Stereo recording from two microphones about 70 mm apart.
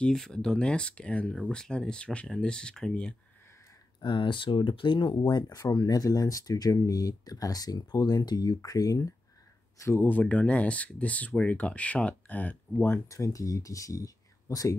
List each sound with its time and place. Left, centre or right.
0.0 s speech: centre
4.5 s speech: left
5.7 s speech: left
8.5 s speech: left
9.9 s speech: left
13.1 s speech: left